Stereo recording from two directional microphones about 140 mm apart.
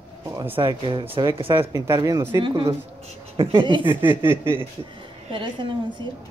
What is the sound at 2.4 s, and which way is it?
Speech, 35° right (ahead or behind).